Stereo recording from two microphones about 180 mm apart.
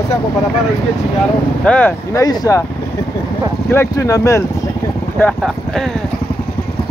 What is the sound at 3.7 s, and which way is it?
Speech, 15° left (ahead or behind).